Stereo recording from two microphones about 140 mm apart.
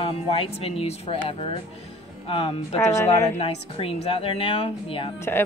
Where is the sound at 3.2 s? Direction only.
50° left (ahead or behind).